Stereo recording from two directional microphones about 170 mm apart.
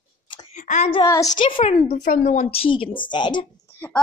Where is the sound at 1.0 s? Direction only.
20° left (ahead or behind).